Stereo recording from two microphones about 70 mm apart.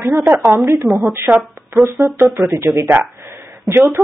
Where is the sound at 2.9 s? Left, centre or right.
Right.